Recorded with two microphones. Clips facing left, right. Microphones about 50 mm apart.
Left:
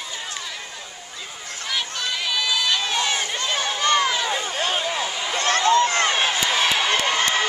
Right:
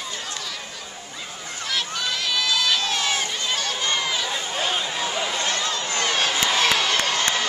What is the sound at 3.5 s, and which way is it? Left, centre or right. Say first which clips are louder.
Run: left 3 dB; centre.